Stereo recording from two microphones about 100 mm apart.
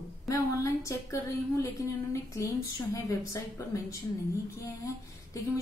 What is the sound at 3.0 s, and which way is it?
A woman's voice, 30° left (ahead or behind).